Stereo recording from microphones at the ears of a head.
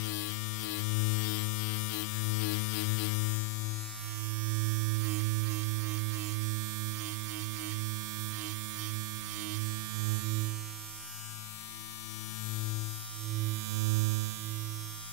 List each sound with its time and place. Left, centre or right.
0.0 s music: left
4.5 s music: right
10.0 s mains hum: right
13.7 s hum: right